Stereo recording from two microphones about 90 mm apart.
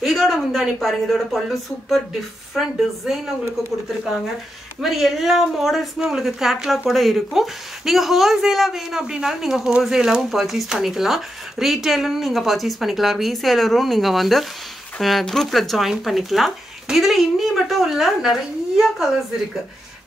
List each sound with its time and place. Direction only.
0.0 s speech: centre (ahead or behind)
4.8 s speech: 5° right (ahead or behind)